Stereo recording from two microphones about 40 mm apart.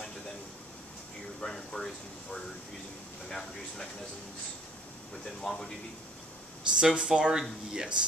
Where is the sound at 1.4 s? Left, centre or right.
Centre.